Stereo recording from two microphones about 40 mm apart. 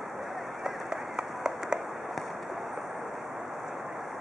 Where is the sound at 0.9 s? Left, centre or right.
Right.